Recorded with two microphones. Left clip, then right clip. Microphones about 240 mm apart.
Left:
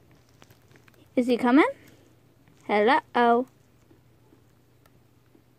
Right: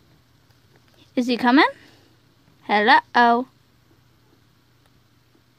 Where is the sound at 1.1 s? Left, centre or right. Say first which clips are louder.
Right 3 dB; right.